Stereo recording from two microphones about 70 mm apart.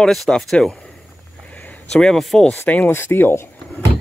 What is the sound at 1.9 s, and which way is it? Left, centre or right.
Speech, centre.